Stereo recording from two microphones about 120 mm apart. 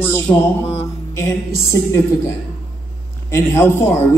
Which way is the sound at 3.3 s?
20° left (ahead or behind).